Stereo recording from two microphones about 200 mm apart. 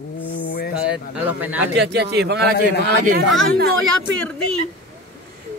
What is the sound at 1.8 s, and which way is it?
Speech, 55° right (ahead or behind).